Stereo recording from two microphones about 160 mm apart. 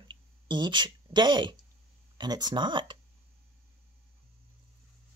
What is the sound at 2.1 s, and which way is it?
Speech, 25° right (ahead or behind).